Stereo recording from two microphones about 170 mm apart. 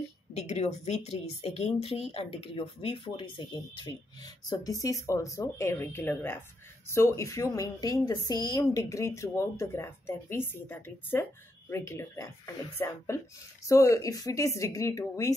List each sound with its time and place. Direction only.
0.3 s a woman's voice: 40° left (ahead or behind); by 15.3 s 20° left (ahead or behind)